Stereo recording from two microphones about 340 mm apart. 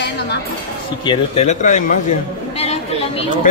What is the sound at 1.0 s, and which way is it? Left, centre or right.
A man's voice, centre.